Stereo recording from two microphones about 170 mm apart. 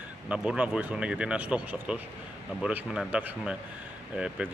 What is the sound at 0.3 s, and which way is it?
Speech, 5° right (ahead or behind).